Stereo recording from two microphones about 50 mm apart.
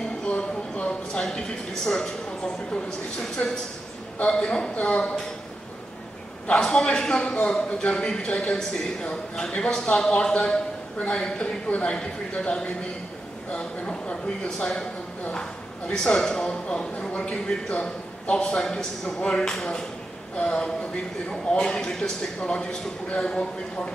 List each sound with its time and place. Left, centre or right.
0.2 s a sound: left
1.9 s a man's voice: centre
6.5 s a man's voice: centre
16.2 s a man's voice: centre
16.4 s a man's voice: left; by 19.8 s centre
20.3 s a man's voice: centre